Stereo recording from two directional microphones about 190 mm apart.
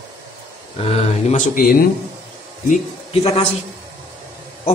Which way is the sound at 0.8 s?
35° left (ahead or behind).